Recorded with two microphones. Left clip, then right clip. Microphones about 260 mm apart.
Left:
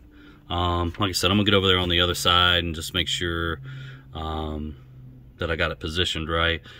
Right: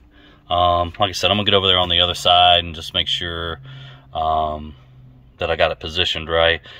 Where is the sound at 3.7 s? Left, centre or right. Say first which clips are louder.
Right 11 dB; centre.